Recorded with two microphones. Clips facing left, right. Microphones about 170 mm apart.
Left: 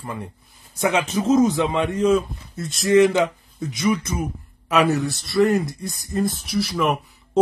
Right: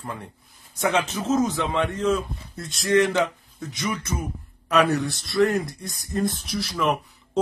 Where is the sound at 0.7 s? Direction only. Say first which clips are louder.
Left 3 dB; 10° left (ahead or behind).